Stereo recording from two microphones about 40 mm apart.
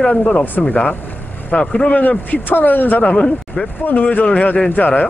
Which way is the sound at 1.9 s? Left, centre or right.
Left.